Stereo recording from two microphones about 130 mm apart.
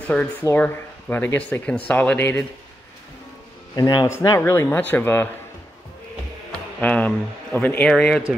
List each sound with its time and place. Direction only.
0.0 s speech: 10° left (ahead or behind)
3.7 s speech: 30° left (ahead or behind)
4.4 s speech: 20° left (ahead or behind)
6.8 s speech: 10° left (ahead or behind)